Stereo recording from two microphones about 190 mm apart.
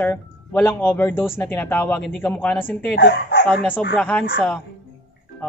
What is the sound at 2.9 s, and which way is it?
Speech, 60° left (ahead or behind).